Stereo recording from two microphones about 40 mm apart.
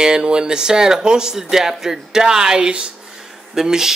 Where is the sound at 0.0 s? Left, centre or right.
Centre.